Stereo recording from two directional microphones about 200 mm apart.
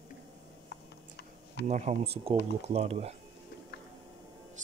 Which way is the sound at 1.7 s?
35° right (ahead or behind).